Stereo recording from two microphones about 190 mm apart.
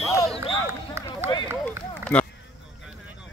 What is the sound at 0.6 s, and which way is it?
Run, 15° right (ahead or behind).